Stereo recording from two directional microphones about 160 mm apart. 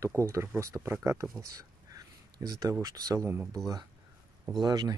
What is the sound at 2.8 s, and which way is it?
Speech, 20° right (ahead or behind).